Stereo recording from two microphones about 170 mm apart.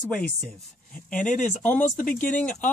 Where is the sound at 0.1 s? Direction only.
5° left (ahead or behind).